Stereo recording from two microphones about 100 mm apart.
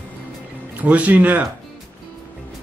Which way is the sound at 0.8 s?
15° right (ahead or behind).